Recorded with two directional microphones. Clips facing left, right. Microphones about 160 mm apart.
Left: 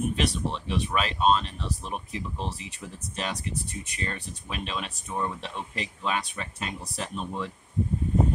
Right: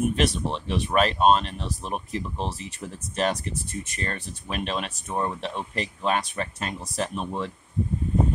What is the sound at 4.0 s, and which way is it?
Speech, 50° right (ahead or behind).